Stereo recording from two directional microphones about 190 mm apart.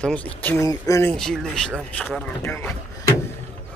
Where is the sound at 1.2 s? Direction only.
5° left (ahead or behind).